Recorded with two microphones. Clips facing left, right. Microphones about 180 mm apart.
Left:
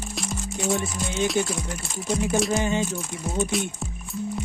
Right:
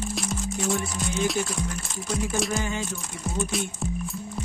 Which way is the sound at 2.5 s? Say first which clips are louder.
Left 5 dB; 20° left (ahead or behind).